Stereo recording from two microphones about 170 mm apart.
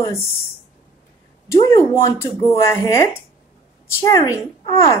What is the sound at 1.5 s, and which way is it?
A woman's voice, 20° left (ahead or behind).